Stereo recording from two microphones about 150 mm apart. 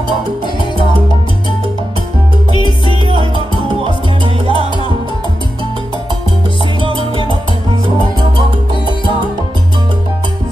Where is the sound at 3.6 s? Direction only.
35° right (ahead or behind).